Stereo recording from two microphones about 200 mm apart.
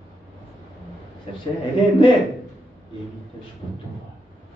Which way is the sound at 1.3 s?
25° left (ahead or behind).